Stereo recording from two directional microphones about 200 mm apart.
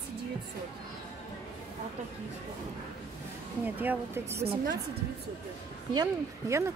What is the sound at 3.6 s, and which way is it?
Speech, 10° right (ahead or behind).